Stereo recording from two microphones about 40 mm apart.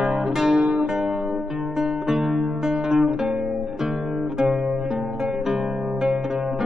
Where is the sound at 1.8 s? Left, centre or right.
Centre.